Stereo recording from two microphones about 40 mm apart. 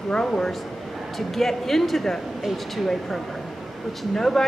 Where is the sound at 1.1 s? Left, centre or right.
Centre.